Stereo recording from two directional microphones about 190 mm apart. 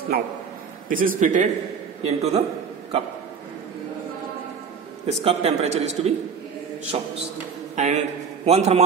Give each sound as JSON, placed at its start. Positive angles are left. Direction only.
{"t": 0.1, "sound": "a man's voice", "side_deg": -50}
{"t": 5.0, "sound": "a man's voice", "side_deg": -35}